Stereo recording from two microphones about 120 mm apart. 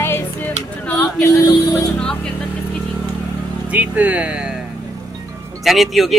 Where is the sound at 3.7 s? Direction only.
10° right (ahead or behind).